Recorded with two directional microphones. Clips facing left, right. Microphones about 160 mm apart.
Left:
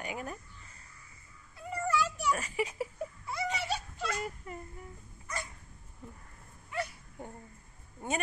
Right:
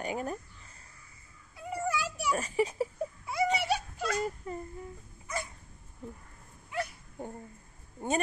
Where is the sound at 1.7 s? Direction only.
10° right (ahead or behind).